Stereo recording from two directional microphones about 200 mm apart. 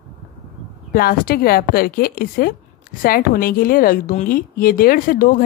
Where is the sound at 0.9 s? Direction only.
50° left (ahead or behind).